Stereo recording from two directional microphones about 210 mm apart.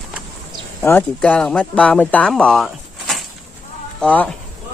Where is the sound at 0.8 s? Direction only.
10° left (ahead or behind).